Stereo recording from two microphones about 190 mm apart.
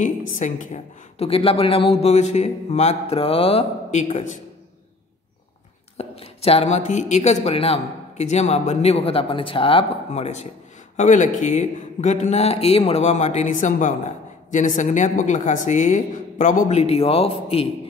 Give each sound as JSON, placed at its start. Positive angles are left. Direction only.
{"t": 0.0, "sound": "a man's voice", "side_deg": 40}
{"t": 5.9, "sound": "a man's voice", "side_deg": 30}